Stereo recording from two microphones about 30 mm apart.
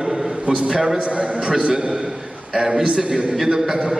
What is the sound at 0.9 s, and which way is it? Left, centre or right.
Speech, right.